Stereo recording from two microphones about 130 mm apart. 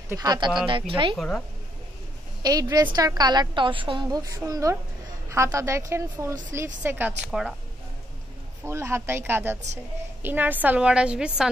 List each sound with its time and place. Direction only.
0.2 s a woman's voice: 30° right (ahead or behind)
0.7 s a woman's voice: 40° right (ahead or behind)
1.1 s a woman's voice: 5° left (ahead or behind)
2.4 s a woman's voice: 30° right (ahead or behind); by 7.5 s 5° right (ahead or behind)
8.6 s a woman's voice: 20° right (ahead or behind)